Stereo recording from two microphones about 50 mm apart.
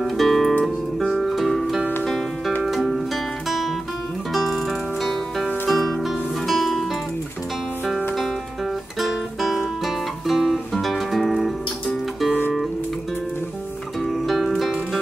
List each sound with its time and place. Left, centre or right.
0.0 s music: centre
3.4 s guitar: centre
4.3 s music: centre
9.0 s music: centre
14.0 s music: centre